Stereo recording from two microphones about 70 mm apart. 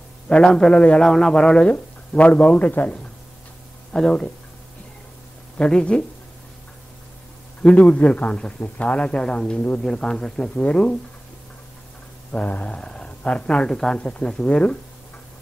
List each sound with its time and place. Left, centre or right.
0.3 s speech: centre
5.6 s speech: centre
7.6 s speech: centre
12.3 s speech: centre